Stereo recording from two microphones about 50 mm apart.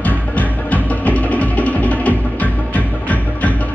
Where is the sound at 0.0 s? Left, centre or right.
Left.